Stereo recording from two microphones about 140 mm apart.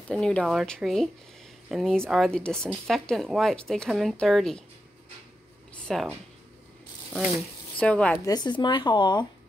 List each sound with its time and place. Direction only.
0.1 s speech: 5° left (ahead or behind)
5.9 s speech: centre (ahead or behind)
7.8 s a woman's voice: 10° left (ahead or behind)
8.3 s speech: 30° left (ahead or behind)